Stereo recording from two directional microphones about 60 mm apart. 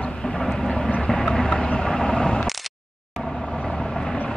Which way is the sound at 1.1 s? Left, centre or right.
Centre.